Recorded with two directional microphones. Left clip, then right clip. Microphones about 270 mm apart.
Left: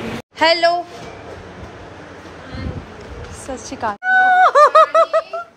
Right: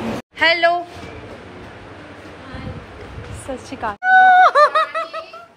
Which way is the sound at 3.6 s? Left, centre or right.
Centre.